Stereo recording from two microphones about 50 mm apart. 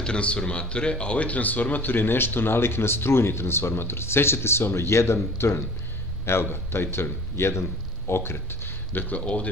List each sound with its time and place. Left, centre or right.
0.0 s speech: left
9.2 s speech: left